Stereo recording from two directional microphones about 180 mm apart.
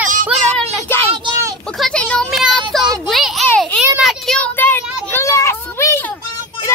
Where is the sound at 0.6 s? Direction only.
10° left (ahead or behind).